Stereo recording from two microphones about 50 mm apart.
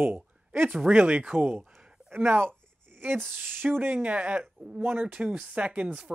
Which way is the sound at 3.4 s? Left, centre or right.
Right.